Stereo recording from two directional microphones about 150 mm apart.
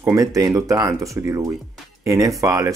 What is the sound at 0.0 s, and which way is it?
Speech, 20° right (ahead or behind).